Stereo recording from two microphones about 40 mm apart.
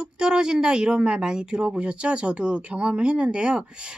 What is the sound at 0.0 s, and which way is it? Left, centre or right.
A woman's voice, centre.